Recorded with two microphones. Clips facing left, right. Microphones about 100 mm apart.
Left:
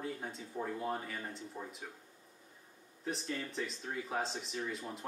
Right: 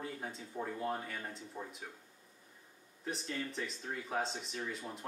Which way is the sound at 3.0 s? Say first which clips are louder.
Left 1 dB; centre (ahead or behind).